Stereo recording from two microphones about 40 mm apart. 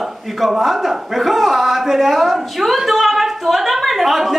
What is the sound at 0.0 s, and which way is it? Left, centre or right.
A man's voice, centre.